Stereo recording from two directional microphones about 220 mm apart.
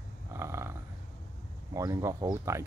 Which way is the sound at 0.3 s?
10° right (ahead or behind).